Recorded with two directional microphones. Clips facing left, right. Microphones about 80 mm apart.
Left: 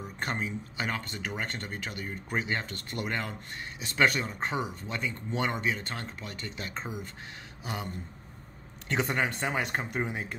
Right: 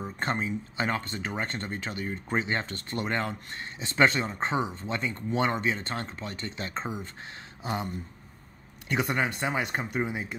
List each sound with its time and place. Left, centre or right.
0.0 s speech: right
8.8 s speech: centre
9.8 s speech: centre